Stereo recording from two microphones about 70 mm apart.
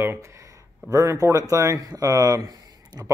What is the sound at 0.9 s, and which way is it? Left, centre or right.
Speech, right.